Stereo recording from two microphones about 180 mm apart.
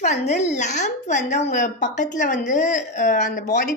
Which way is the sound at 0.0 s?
40° left (ahead or behind).